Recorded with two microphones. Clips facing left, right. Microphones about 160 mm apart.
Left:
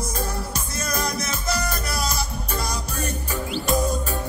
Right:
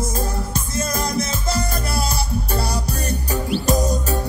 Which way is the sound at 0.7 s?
25° right (ahead or behind).